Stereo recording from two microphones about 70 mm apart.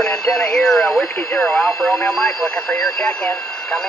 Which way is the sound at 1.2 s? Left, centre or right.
Left.